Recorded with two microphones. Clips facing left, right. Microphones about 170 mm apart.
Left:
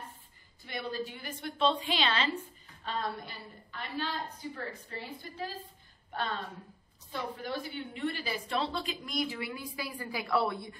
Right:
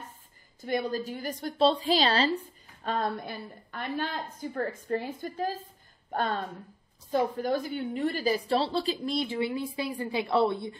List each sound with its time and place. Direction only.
0.6 s a woman's voice: 45° right (ahead or behind)
2.8 s a woman's voice: 50° right (ahead or behind); by 10.8 s 25° right (ahead or behind)